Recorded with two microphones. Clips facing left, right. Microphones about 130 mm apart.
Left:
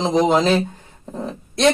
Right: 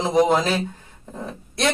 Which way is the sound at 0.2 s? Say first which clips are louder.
Left 1 dB; 20° left (ahead or behind).